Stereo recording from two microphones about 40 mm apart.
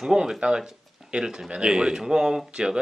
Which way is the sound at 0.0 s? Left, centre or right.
Centre.